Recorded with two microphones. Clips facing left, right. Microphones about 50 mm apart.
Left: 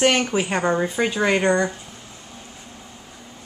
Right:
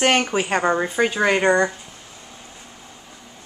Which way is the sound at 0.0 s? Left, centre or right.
Centre.